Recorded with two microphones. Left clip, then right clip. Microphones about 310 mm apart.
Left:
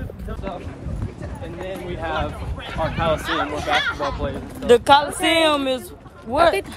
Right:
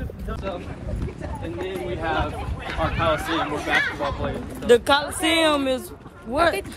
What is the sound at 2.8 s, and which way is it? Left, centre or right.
Speech, left.